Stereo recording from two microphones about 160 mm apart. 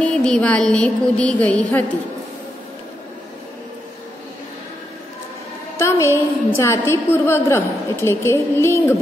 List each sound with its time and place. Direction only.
0.0 s a woman's voice: 5° left (ahead or behind)
5.8 s a woman's voice: 15° left (ahead or behind)